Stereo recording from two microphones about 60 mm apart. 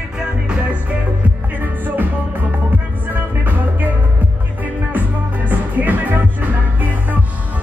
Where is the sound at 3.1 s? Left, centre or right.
Right.